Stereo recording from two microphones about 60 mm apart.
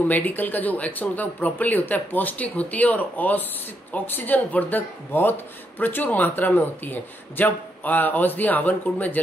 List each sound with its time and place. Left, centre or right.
0.1 s speech: left